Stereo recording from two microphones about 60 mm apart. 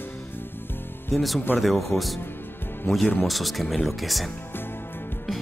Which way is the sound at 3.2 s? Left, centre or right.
Centre.